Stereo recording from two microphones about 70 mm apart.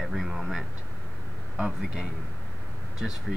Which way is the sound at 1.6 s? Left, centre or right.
Centre.